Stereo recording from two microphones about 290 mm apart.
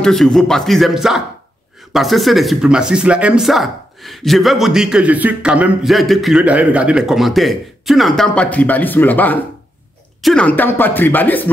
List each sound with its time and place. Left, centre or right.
0.0 s speech: centre